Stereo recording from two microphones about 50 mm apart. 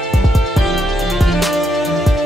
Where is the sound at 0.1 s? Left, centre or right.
Centre.